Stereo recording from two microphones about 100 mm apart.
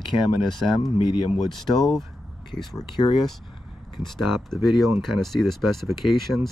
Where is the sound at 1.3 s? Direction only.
5° left (ahead or behind).